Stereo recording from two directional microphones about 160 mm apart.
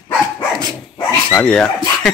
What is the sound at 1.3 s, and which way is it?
Speech, 5° left (ahead or behind).